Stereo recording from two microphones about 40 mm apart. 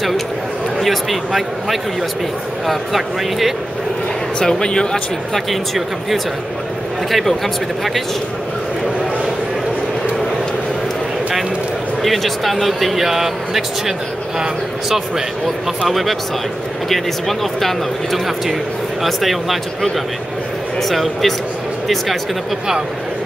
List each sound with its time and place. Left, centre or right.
0.7 s speech: centre
4.4 s speech: centre
4.9 s speech: centre
12.0 s speech: centre
15.9 s speech: centre
20.9 s speech: centre